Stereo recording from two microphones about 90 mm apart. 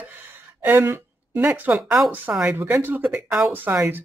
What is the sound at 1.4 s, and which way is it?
Speech, 15° right (ahead or behind).